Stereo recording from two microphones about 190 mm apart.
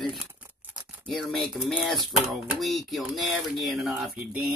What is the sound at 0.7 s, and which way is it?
Speech, centre (ahead or behind).